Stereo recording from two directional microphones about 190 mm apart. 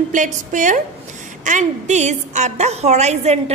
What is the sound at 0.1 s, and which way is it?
A woman's voice, 40° right (ahead or behind).